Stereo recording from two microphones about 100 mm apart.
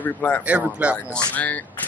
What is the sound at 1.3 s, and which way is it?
Speech, 15° left (ahead or behind).